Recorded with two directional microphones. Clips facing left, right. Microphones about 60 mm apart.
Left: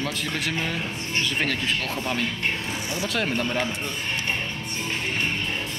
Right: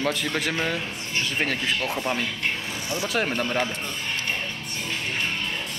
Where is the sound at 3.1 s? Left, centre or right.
Centre.